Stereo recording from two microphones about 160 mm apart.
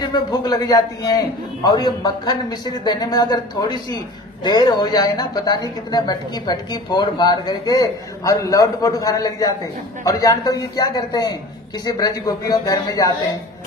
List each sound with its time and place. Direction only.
0.0 s a man's voice: 25° left (ahead or behind)